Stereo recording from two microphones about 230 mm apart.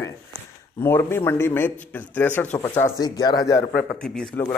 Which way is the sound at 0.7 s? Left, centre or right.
Centre.